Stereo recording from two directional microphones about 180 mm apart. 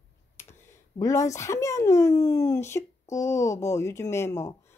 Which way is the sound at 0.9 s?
20° left (ahead or behind).